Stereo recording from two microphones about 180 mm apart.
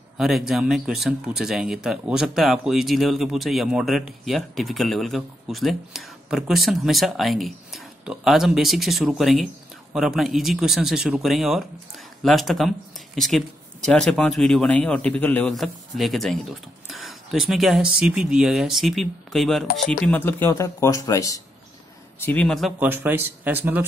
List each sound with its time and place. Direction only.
0.2 s speech: centre (ahead or behind); by 21.4 s 20° left (ahead or behind)
22.2 s speech: 5° left (ahead or behind); by 23.8 s 10° right (ahead or behind)